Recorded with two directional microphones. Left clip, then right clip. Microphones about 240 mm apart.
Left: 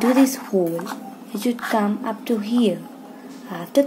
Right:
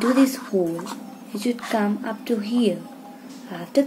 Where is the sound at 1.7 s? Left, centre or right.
Centre.